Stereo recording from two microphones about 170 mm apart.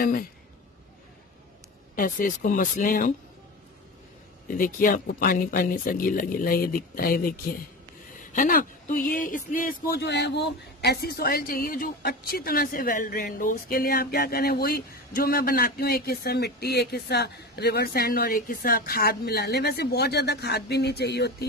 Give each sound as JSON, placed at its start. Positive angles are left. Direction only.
{"t": 2.0, "sound": "a man's voice", "side_deg": 55}
{"t": 4.6, "sound": "a man's voice", "side_deg": 55}
{"t": 9.9, "sound": "speech", "side_deg": 85}